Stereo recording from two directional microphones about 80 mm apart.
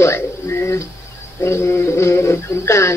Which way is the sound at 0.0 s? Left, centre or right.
Left.